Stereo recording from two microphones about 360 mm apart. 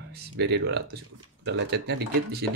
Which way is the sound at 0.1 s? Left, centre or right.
Right.